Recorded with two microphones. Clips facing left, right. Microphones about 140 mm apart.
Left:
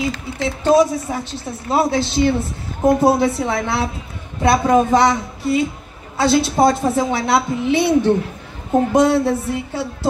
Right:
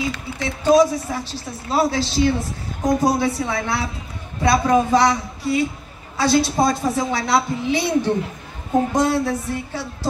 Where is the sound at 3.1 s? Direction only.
25° left (ahead or behind).